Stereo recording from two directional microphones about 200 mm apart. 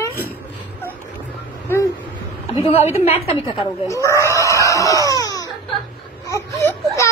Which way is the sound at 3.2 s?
20° left (ahead or behind).